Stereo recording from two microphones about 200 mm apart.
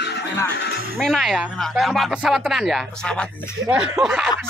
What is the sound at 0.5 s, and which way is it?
Music, 55° left (ahead or behind).